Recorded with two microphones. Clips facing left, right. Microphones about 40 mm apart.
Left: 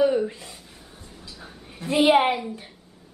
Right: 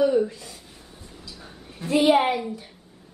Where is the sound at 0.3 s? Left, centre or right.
Left.